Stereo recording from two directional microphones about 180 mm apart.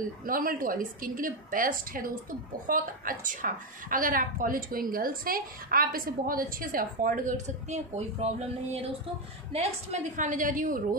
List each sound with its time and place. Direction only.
0.3 s a woman's voice: 50° right (ahead or behind)
9.5 s a woman's voice: 35° right (ahead or behind)